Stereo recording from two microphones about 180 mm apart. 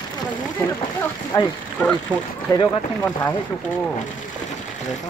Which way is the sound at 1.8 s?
5° left (ahead or behind).